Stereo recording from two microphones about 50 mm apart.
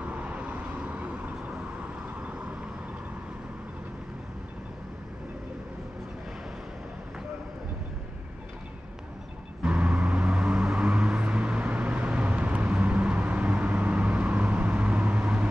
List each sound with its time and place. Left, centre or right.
0.0 s vehicle: right
9.7 s vehicle: right